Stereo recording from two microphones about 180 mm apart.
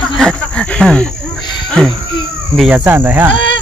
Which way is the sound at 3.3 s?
90° left.